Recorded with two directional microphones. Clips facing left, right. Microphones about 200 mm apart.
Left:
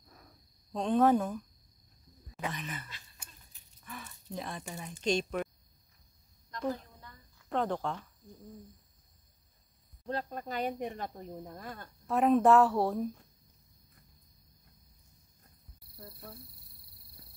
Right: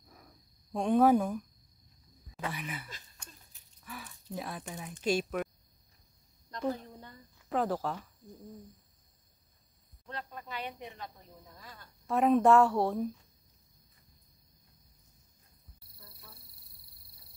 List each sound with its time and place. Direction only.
0.7 s speech: 10° right (ahead or behind)
2.5 s speech: 10° right (ahead or behind)
3.8 s a sound: 5° right (ahead or behind)
5.0 s speech: 5° right (ahead or behind)
7.0 s a sound: 30° right (ahead or behind)
7.4 s a woman's voice: 5° right (ahead or behind)
10.0 s speech: 40° left (ahead or behind)
12.1 s a woman's voice: centre (ahead or behind)
16.0 s speech: 60° left (ahead or behind)